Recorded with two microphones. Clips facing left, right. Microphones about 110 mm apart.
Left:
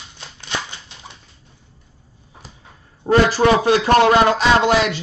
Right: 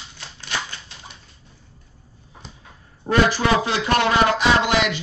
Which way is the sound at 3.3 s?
40° left (ahead or behind).